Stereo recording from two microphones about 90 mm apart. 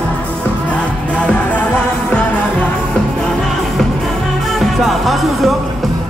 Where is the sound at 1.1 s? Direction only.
15° left (ahead or behind).